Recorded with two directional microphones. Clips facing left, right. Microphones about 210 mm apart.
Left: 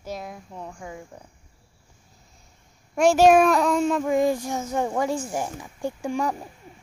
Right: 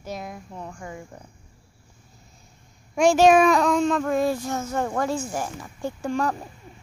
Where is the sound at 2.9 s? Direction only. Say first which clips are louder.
Even; 5° left (ahead or behind).